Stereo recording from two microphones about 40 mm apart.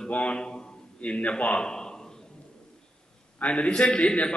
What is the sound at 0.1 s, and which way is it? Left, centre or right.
Speech, left.